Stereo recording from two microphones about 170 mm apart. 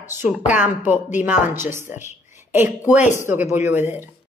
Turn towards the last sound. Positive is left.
turn(degrees=-15)  # may be behind; listen again after turning